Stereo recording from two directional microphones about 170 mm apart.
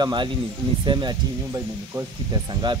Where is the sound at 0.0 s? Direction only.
25° right (ahead or behind).